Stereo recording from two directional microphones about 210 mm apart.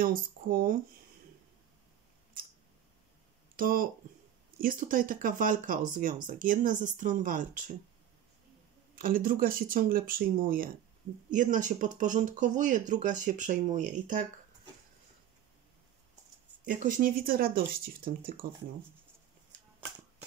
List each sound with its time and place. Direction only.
0.0 s speech: 45° right (ahead or behind)
3.5 s speech: 40° right (ahead or behind)
8.9 s speech: 40° right (ahead or behind)
16.6 s speech: 40° right (ahead or behind)